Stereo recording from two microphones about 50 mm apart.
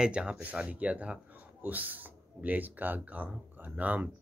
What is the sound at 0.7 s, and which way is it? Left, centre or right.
Speech, right.